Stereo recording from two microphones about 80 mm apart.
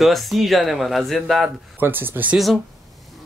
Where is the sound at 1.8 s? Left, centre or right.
Right.